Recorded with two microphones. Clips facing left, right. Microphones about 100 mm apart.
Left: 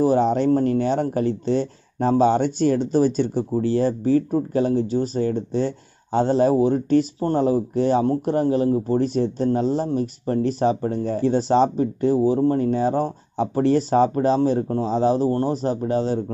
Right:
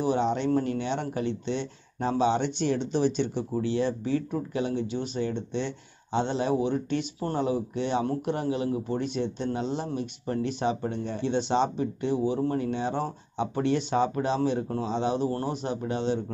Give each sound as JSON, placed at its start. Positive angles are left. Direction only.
{"t": 0.0, "sound": "speech", "side_deg": 40}